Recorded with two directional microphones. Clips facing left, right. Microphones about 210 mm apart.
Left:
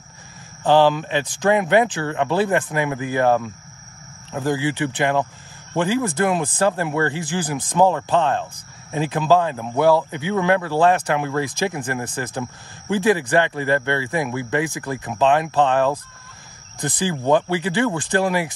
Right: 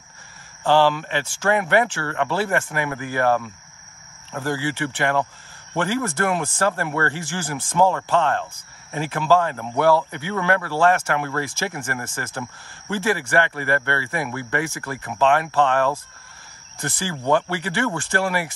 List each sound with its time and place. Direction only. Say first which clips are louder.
0.7 s speech: left 2 dB; 15° left (ahead or behind)